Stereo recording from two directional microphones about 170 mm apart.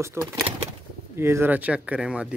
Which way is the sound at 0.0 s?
15° right (ahead or behind).